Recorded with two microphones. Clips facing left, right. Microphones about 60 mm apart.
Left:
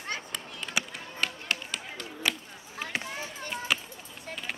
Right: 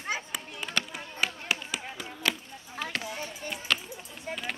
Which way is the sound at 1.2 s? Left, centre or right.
Centre.